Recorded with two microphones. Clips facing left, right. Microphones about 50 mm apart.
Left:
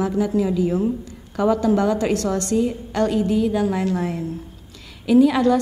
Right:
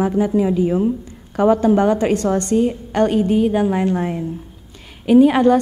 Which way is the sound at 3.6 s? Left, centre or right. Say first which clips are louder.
Right 3 dB; right.